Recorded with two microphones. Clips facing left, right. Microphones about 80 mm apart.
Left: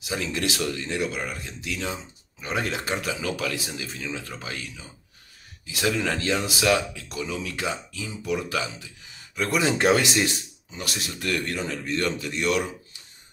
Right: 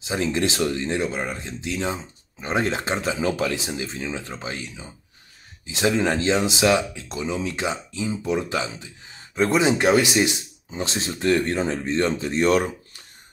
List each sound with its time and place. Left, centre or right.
0.0 s speech: right